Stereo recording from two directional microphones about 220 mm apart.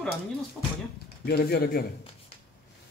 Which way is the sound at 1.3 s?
45° left (ahead or behind).